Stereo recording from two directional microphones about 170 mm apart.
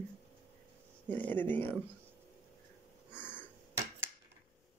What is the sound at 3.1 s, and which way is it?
Sniff, 10° left (ahead or behind).